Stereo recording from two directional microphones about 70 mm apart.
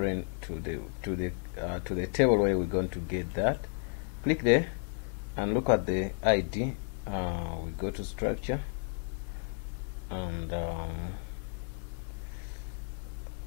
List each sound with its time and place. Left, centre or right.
0.0 s speech: left
5.7 s speech: left
10.0 s speech: left